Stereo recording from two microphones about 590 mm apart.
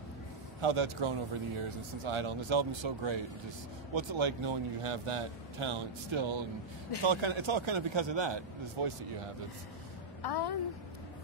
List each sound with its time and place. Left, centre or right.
0.6 s speech: right
10.2 s a woman's voice: left